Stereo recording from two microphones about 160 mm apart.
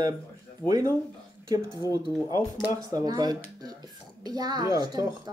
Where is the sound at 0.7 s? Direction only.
20° right (ahead or behind).